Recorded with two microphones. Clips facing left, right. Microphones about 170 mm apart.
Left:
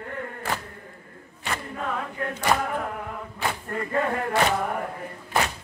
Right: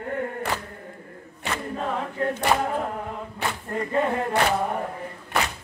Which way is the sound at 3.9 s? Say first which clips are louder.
Right 2 dB; 20° right (ahead or behind).